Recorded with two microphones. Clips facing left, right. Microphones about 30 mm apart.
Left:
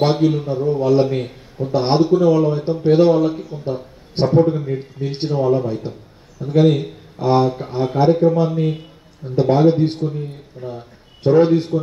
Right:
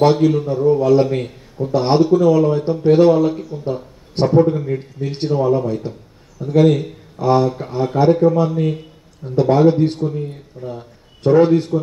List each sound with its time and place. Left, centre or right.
0.0 s a man's voice: centre
10.0 s a man's voice: centre